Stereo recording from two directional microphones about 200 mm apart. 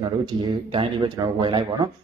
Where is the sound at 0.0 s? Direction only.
20° right (ahead or behind).